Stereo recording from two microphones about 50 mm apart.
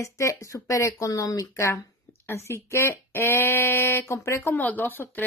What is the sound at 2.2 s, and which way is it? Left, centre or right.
Speech, left.